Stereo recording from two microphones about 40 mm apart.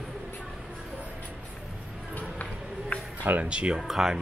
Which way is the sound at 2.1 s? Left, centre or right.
Left.